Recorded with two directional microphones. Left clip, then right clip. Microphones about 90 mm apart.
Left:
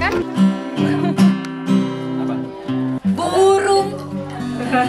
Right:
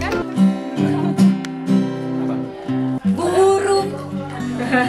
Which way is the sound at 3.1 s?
20° left (ahead or behind).